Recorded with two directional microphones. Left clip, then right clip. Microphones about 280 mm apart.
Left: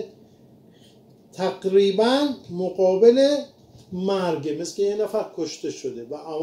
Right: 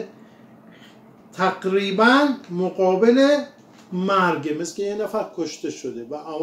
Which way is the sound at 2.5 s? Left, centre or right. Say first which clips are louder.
Left 1 dB; centre.